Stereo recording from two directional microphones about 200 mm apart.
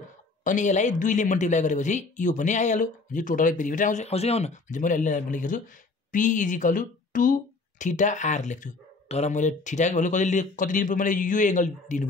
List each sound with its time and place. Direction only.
0.4 s a woman's voice: 40° left (ahead or behind)